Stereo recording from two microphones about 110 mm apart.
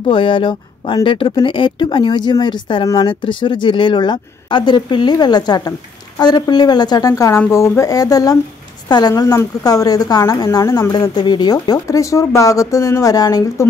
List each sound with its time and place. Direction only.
0.0 s speech: 50° left (ahead or behind)